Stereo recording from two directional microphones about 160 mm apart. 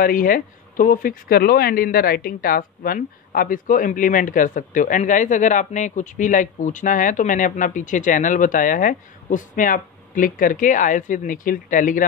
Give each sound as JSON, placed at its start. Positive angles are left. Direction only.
{"t": 0.0, "sound": "speech", "side_deg": 60}